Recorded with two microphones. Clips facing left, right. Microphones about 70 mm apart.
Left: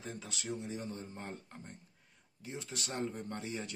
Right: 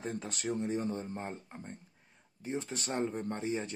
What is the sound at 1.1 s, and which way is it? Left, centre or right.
Speech, right.